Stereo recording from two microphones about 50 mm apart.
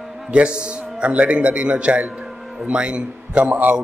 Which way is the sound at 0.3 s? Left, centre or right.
Right.